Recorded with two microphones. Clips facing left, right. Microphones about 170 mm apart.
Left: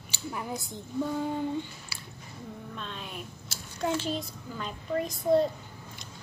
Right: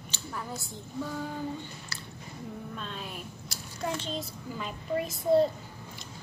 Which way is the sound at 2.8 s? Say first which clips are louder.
Even; centre (ahead or behind).